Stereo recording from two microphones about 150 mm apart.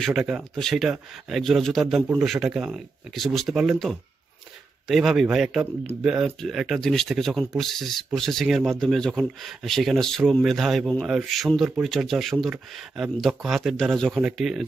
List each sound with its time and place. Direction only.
0.0 s speech: 5° right (ahead or behind)